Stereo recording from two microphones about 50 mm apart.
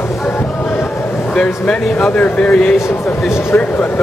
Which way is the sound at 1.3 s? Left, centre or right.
Centre.